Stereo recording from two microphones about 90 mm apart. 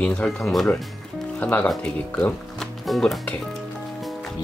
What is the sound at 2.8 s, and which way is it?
Speech, centre (ahead or behind).